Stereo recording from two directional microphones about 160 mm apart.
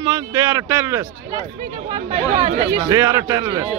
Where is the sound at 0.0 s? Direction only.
20° right (ahead or behind).